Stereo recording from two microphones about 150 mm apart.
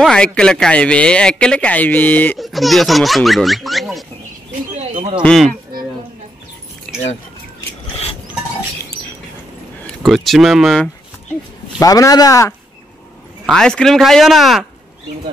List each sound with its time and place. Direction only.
0.0 s speech: 5° left (ahead or behind)
2.3 s speech: centre (ahead or behind)
4.7 s bird: 45° right (ahead or behind)
5.2 s speech: 5° left (ahead or behind)
6.9 s keys jangling: 5° left (ahead or behind)
9.8 s speech: centre (ahead or behind)
11.8 s a man's voice: 25° left (ahead or behind)
13.5 s speech: 5° left (ahead or behind)